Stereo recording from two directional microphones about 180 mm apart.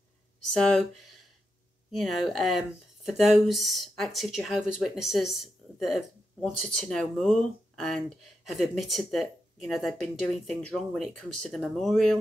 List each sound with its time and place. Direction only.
0.5 s speech: 5° left (ahead or behind)